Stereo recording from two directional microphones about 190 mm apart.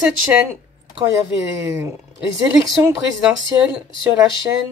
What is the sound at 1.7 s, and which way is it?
Speech, 10° right (ahead or behind).